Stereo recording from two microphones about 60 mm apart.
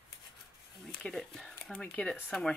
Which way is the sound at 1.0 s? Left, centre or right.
Centre.